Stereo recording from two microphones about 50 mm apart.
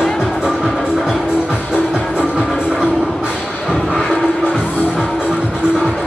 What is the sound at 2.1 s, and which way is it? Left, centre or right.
Music, centre.